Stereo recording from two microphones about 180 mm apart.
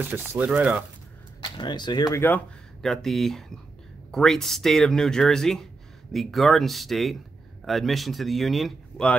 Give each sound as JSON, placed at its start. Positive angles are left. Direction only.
{"t": 0.0, "sound": "speech", "side_deg": -10}
{"t": 1.4, "sound": "speech", "side_deg": 25}
{"t": 2.2, "sound": "speech", "side_deg": 5}